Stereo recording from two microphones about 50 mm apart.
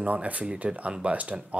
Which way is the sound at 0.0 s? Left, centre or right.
Right.